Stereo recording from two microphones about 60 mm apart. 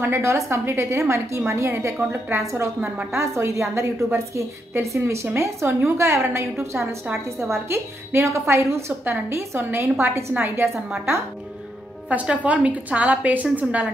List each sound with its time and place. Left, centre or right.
0.2 s a woman's voice: right
2.0 s a woman's voice: right
2.3 s a woman's voice: right
12.1 s a woman's voice: right